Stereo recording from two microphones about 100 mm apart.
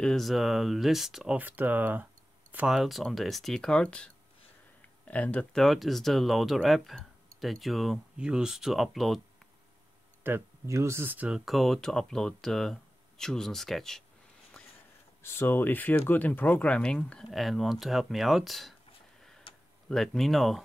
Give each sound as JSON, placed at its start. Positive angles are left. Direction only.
{"t": 0.0, "sound": "speech", "side_deg": 0}
{"t": 1.4, "sound": "speech", "side_deg": -15}
{"t": 2.7, "sound": "speech", "side_deg": 0}
{"t": 10.2, "sound": "speech", "side_deg": -25}
{"t": 11.2, "sound": "speech", "side_deg": -5}
{"t": 15.2, "sound": "speech", "side_deg": 20}
{"t": 17.2, "sound": "speech", "side_deg": 0}
{"t": 19.9, "sound": "speech", "side_deg": 5}